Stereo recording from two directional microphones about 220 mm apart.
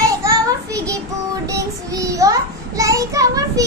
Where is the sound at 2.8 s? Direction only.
15° right (ahead or behind).